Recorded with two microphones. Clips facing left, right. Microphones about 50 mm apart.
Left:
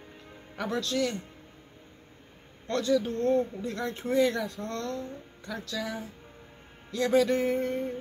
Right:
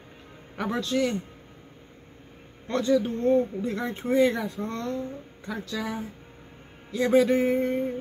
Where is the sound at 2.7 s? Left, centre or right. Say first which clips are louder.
Right 3 dB; centre.